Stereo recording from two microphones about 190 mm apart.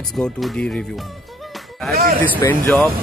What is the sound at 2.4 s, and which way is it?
Speech, 15° left (ahead or behind).